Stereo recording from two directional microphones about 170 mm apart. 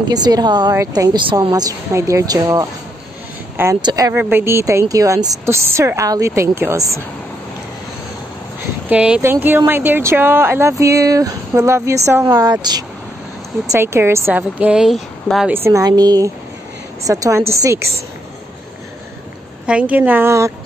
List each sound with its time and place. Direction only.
0.1 s a woman's voice: 25° right (ahead or behind)
3.8 s a woman's voice: 20° right (ahead or behind)
8.8 s a woman's voice: 10° right (ahead or behind)
15.5 s a woman's voice: 15° right (ahead or behind)
19.6 s a woman's voice: 5° right (ahead or behind)